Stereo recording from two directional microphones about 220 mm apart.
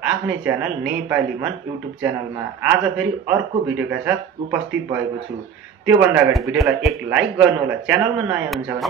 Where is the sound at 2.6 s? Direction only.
10° right (ahead or behind).